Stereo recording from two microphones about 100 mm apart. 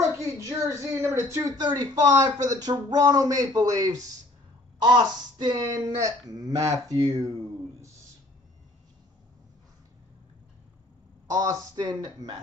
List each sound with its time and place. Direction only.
0.5 s speech: 25° right (ahead or behind)
1.6 s speech: 45° right (ahead or behind)
4.8 s speech: 45° right (ahead or behind)
11.2 s speech: 35° right (ahead or behind)